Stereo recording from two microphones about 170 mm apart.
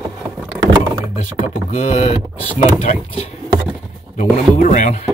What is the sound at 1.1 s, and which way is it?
Speech, 40° left (ahead or behind).